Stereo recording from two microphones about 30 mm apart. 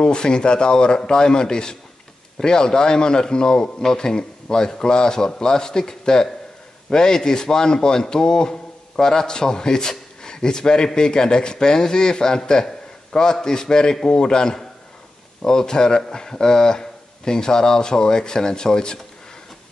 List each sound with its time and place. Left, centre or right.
0.0 s a man's voice: left